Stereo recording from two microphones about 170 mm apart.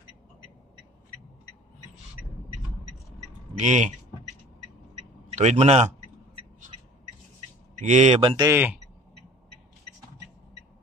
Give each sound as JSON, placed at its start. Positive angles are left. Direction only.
{"t": 3.5, "sound": "speech", "side_deg": -45}
{"t": 5.3, "sound": "speech", "side_deg": -40}
{"t": 7.8, "sound": "speech", "side_deg": -45}
{"t": 8.5, "sound": "speech", "side_deg": -10}